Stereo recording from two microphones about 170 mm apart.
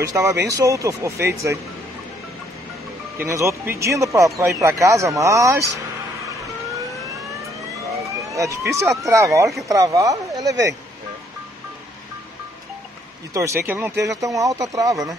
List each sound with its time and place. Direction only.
0.0 s speech: 20° right (ahead or behind)
3.2 s speech: 15° right (ahead or behind)
8.3 s speech: 20° right (ahead or behind)
13.3 s speech: 15° right (ahead or behind)